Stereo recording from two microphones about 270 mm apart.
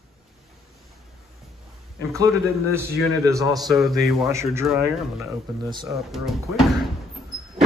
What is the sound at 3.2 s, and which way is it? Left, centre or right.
Speech, centre.